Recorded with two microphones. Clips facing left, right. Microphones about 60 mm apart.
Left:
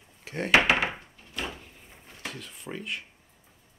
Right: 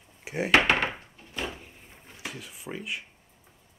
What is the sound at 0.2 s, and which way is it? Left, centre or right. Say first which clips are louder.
Door: right 2 dB; centre.